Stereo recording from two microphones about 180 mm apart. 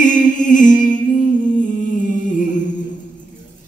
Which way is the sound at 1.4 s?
45° left (ahead or behind).